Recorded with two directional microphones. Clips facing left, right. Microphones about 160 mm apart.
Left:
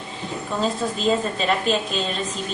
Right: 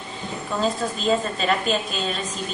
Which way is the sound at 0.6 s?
Centre (ahead or behind).